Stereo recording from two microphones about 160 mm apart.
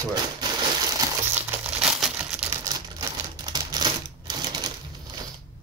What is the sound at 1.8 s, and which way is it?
Crumpling, 10° right (ahead or behind).